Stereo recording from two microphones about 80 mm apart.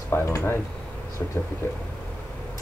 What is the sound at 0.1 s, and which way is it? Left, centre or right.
Speech, left.